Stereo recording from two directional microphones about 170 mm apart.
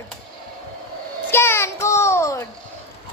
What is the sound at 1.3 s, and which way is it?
A child's voice, 15° left (ahead or behind).